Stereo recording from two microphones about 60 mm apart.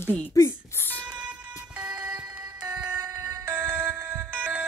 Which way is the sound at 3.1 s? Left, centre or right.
Right.